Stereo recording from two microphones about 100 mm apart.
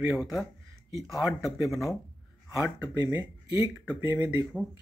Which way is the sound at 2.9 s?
35° right (ahead or behind).